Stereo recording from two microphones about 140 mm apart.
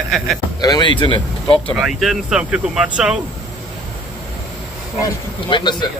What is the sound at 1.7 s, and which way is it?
Speech, centre (ahead or behind).